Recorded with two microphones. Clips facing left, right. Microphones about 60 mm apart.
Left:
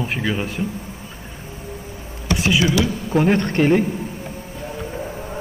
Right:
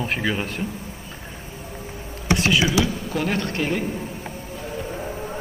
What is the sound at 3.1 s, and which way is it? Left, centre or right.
Speech, left.